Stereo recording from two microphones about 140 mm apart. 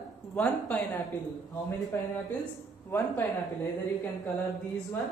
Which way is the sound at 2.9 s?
15° left (ahead or behind).